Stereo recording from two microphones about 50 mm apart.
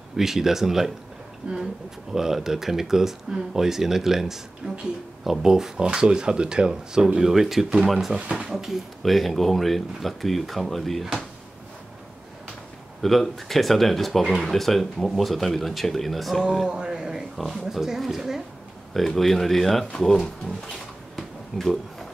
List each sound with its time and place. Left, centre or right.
0.1 s speech: centre
13.0 s speech: centre
16.4 s speech: centre
17.4 s speech: centre
21.2 s a sound: centre